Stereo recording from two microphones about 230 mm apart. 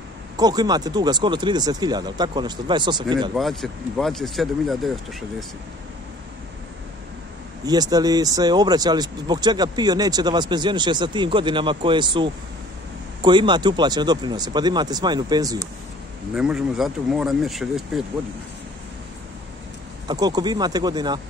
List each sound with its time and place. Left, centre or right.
0.4 s speech: centre
3.3 s speech: centre
7.6 s speech: centre
16.3 s speech: centre
20.1 s speech: centre